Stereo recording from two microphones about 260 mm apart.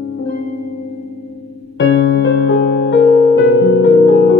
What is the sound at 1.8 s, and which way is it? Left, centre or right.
Music, left.